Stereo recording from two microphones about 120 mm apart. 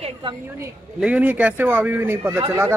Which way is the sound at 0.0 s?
45° right (ahead or behind).